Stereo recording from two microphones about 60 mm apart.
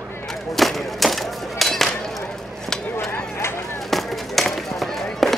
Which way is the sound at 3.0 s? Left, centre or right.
Left.